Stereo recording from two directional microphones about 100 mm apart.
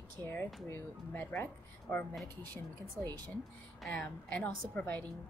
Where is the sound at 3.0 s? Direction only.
45° right (ahead or behind).